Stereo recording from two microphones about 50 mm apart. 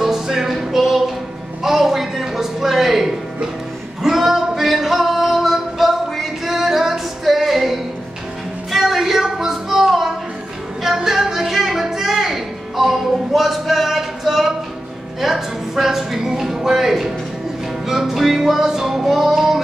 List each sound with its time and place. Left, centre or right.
0.0 s music: centre
15.1 s a sound: centre
17.8 s music: centre